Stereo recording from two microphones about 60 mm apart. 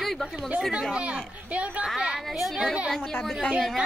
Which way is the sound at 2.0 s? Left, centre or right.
Centre.